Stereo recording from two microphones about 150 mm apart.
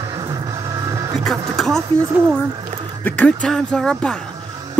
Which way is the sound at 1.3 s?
Centre (ahead or behind).